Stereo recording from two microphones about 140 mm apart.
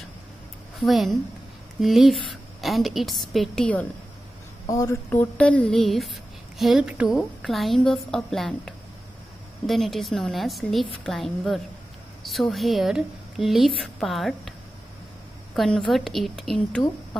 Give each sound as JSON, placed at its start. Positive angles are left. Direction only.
{"t": 0.7, "sound": "a woman's voice", "side_deg": 0}
{"t": 4.6, "sound": "speech", "side_deg": 25}
{"t": 5.1, "sound": "a woman's voice", "side_deg": 10}
{"t": 15.5, "sound": "a woman's voice", "side_deg": 0}